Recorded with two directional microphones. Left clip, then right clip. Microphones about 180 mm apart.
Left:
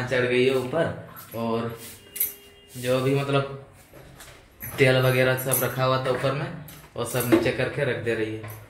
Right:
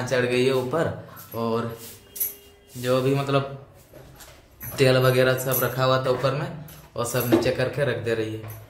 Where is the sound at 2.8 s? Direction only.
20° right (ahead or behind).